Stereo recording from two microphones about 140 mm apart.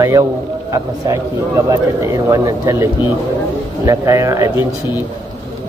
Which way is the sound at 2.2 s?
25° right (ahead or behind).